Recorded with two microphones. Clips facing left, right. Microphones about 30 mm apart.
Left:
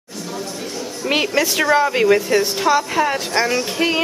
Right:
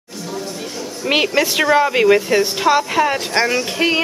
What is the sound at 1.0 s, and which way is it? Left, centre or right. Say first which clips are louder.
A man's voice: right 2 dB; centre.